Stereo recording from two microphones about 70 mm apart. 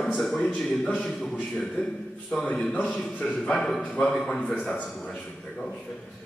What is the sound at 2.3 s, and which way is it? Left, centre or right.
A man's voice, centre.